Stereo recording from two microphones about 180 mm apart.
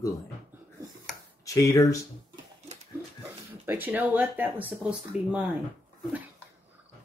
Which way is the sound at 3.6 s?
10° right (ahead or behind).